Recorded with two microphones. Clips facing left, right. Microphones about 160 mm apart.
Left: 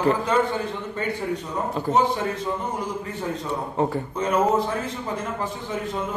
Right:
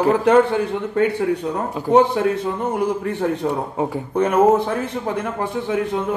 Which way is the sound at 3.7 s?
10° right (ahead or behind).